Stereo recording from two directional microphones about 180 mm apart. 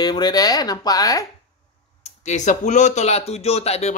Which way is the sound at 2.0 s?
40° left (ahead or behind).